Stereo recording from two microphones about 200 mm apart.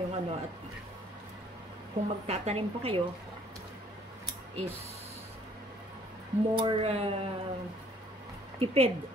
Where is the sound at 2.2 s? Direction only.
30° right (ahead or behind).